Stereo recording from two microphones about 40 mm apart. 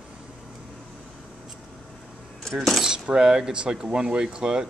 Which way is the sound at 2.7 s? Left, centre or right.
Centre.